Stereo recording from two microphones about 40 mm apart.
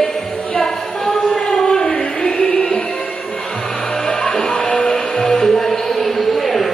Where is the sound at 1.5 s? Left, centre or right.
Centre.